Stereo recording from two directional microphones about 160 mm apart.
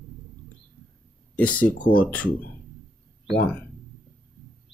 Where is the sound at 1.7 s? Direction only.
55° left (ahead or behind).